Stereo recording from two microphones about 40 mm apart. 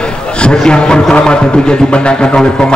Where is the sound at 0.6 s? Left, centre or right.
Left.